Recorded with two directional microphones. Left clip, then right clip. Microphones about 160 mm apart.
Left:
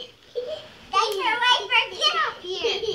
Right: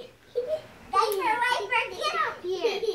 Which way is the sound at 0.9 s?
20° right (ahead or behind).